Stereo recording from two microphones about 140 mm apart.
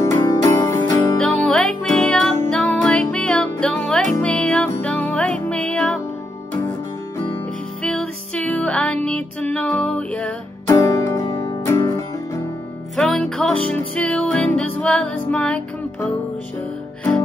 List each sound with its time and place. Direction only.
0.0 s music: 20° left (ahead or behind)
1.2 s music: 5° left (ahead or behind)
7.8 s music: 5° left (ahead or behind)
10.7 s music: 25° left (ahead or behind)
12.9 s music: 5° left (ahead or behind)